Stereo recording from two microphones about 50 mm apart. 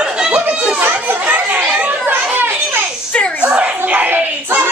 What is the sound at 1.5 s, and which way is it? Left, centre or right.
Chatter, right.